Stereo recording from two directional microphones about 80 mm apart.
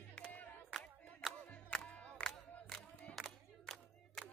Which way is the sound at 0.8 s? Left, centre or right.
Centre.